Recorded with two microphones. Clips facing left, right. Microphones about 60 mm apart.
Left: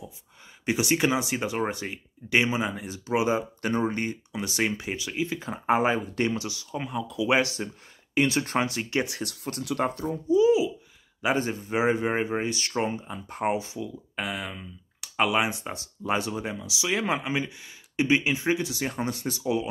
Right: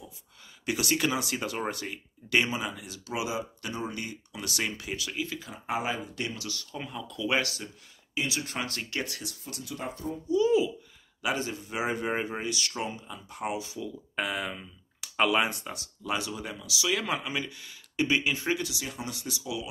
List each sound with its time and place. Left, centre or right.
0.7 s speech: left
3.3 s speech: left
4.3 s speech: left
6.5 s speech: centre
7.6 s speech: left
8.3 s speech: left
8.6 s speech: centre
9.2 s speech: left
9.6 s speech: left
10.4 s speech: centre
11.2 s speech: left
14.1 s speech: centre
15.5 s speech: left
18.7 s speech: left